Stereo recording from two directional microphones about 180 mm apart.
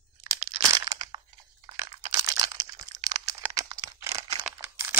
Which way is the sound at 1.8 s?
20° right (ahead or behind).